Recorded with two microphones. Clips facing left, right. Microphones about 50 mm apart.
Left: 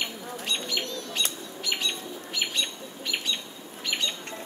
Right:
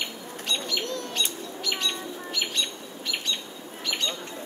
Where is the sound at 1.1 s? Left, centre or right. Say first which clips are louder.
Right 1 dB; centre.